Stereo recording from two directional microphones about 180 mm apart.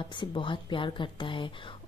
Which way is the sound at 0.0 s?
25° left (ahead or behind).